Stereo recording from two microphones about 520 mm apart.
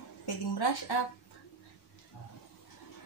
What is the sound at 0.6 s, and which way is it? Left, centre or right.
Speech, left.